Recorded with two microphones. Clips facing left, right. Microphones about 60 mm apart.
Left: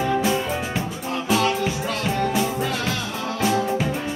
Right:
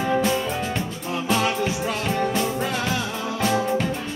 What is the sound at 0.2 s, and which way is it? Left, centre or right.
Music, centre.